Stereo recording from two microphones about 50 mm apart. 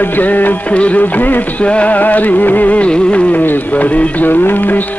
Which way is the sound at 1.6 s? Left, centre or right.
Left.